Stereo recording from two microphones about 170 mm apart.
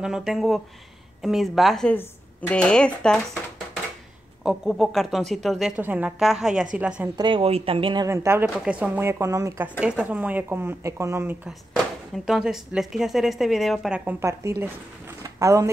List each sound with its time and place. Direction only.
0.0 s speech: centre (ahead or behind)
7.2 s speech: 30° right (ahead or behind)
8.1 s speech: 15° right (ahead or behind)
9.8 s speech: 5° right (ahead or behind)
12.3 s speech: 5° right (ahead or behind)
15.3 s speech: 20° right (ahead or behind)